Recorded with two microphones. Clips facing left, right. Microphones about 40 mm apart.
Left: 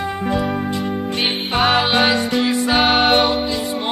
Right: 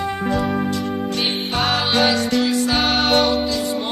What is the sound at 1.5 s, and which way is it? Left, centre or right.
Music, left.